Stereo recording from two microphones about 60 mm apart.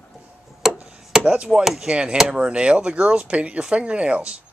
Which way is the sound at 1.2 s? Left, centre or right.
Centre.